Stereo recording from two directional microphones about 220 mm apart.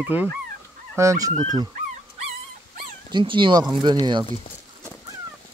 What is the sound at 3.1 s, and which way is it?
Speech, 20° right (ahead or behind).